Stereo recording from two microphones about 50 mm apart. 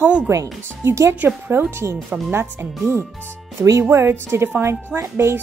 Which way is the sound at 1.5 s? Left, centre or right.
Right.